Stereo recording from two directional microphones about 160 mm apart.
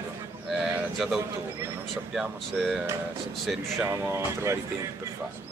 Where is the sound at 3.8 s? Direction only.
15° right (ahead or behind).